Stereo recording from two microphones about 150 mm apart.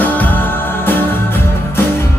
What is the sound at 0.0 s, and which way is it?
Music, 10° left (ahead or behind).